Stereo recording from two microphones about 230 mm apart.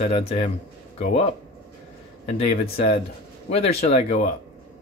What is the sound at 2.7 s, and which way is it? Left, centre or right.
Speech, left.